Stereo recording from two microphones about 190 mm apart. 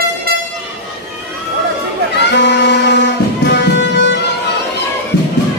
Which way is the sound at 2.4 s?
65° left (ahead or behind).